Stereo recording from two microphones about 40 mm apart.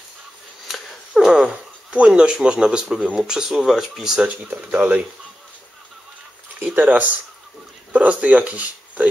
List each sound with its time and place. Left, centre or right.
0.7 s a sound: centre
1.5 s speech: right; by 4.2 s centre
4.6 s speech: right
6.7 s speech: right